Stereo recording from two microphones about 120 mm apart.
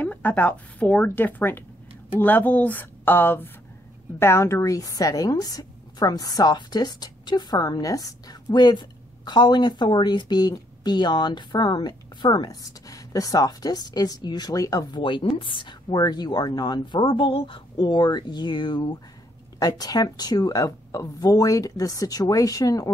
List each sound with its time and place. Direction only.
0.0 s a woman's voice: 15° left (ahead or behind); by 22.8 s 30° left (ahead or behind)